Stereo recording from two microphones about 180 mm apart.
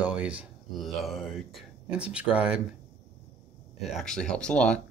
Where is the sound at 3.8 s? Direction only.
Centre (ahead or behind).